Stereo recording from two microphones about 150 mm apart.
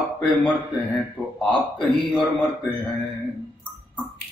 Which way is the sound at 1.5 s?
30° left (ahead or behind).